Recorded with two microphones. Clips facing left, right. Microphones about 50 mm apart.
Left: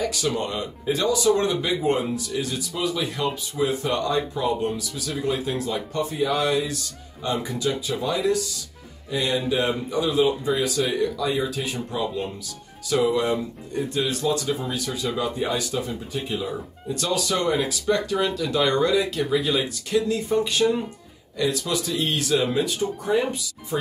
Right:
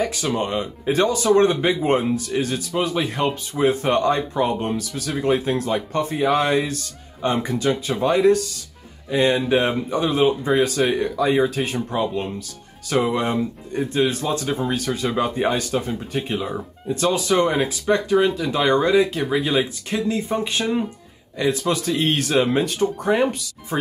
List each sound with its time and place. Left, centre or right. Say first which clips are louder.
0.0 s speech: right 2 dB; right
0.8 s speech: right 2 dB; right
16.9 s speech: right 5 dB; right